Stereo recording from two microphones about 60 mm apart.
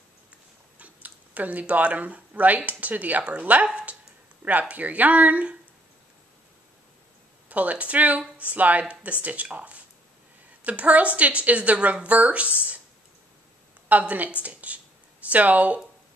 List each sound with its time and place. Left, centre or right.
0.7 s speech: right
7.4 s speech: right
13.8 s speech: right